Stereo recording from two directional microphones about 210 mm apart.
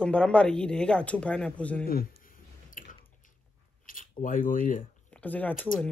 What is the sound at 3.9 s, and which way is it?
Speech, 40° left (ahead or behind).